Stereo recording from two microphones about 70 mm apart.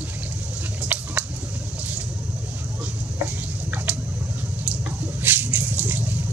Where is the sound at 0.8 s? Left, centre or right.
Right.